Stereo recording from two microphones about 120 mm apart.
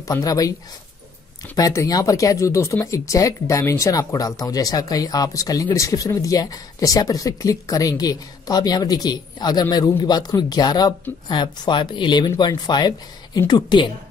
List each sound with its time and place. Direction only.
0.0 s speech: 30° left (ahead or behind)
1.6 s speech: 30° left (ahead or behind)